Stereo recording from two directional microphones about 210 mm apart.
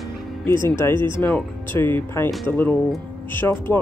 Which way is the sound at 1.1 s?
10° left (ahead or behind).